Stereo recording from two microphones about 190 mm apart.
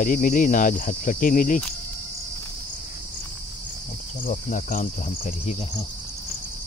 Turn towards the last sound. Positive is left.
turn(degrees=40)  # may be behind; listen again after turning